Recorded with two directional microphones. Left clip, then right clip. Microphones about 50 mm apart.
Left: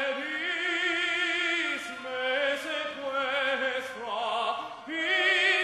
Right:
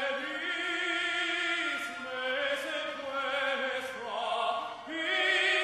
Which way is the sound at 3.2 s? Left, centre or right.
Left.